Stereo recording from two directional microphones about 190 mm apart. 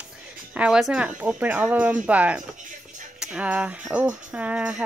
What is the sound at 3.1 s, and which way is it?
Music, 5° right (ahead or behind).